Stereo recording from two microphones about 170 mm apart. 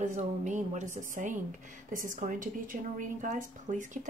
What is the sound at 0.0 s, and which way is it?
A woman's voice, 45° right (ahead or behind).